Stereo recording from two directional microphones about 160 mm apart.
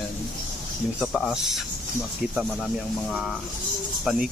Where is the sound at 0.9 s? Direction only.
Centre (ahead or behind).